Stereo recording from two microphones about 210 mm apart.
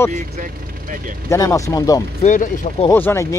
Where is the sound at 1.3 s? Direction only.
15° left (ahead or behind).